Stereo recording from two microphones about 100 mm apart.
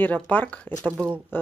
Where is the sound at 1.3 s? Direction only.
20° left (ahead or behind).